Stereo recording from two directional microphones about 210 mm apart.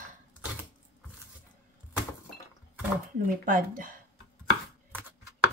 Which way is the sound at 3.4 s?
40° right (ahead or behind).